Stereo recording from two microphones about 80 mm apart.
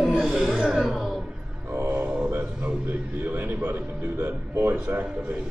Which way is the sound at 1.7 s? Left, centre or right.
Right.